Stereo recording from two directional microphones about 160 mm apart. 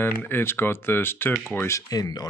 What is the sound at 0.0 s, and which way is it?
Speech, 15° left (ahead or behind).